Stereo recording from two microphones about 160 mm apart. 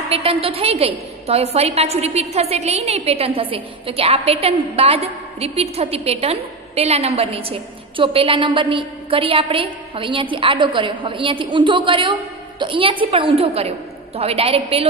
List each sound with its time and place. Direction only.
0.1 s a woman's voice: 35° right (ahead or behind)